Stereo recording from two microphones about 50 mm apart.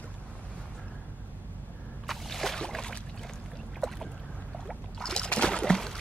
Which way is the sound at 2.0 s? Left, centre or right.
Centre.